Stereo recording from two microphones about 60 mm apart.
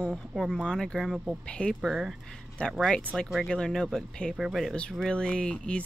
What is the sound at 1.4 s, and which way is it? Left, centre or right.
Speech, centre.